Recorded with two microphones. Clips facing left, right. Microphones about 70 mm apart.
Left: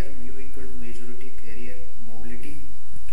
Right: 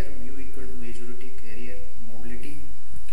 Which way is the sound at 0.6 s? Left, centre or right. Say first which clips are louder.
Even; centre.